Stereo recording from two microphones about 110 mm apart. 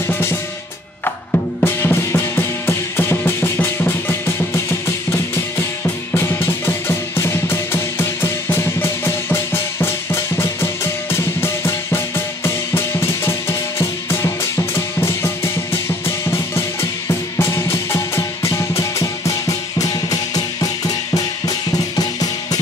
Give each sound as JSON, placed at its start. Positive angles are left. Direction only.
{"t": 1.0, "sound": "music", "side_deg": 20}
{"t": 17.4, "sound": "music", "side_deg": 25}